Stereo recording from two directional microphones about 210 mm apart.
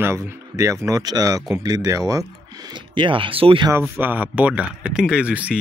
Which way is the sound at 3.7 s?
10° right (ahead or behind).